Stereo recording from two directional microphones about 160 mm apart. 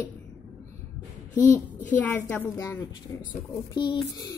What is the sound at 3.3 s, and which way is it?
A woman's voice, 30° left (ahead or behind).